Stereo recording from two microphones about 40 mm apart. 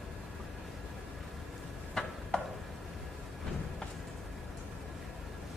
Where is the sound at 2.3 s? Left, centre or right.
Left.